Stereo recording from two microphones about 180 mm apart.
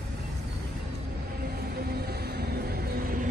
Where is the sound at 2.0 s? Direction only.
60° right (ahead or behind).